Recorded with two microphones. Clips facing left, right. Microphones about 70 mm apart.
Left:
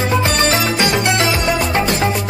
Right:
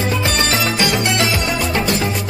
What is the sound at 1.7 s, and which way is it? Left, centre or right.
Music, left.